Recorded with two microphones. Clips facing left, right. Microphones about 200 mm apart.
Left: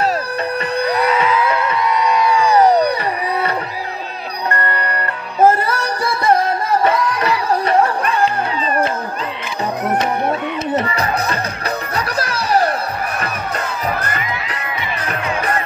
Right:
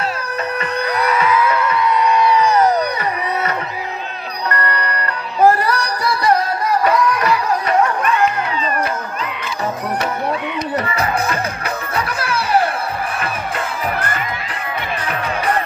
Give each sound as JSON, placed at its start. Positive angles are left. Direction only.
{"t": 0.6, "sound": "music", "side_deg": 30}
{"t": 4.5, "sound": "music", "side_deg": 25}
{"t": 12.2, "sound": "music", "side_deg": 40}